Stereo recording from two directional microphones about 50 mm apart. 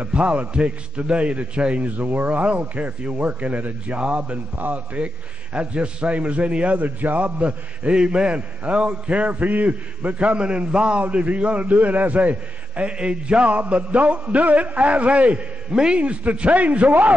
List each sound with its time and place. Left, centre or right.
0.0 s a man's voice: right